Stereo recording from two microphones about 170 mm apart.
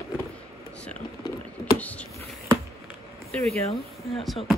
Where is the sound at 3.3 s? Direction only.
35° right (ahead or behind).